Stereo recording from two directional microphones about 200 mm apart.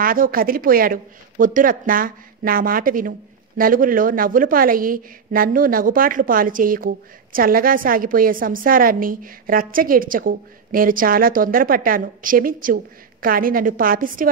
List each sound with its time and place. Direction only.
0.0 s a woman's voice: 45° right (ahead or behind)